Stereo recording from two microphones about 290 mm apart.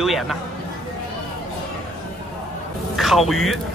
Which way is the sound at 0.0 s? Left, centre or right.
Centre.